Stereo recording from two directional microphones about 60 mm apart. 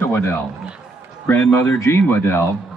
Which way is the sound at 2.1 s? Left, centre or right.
Left.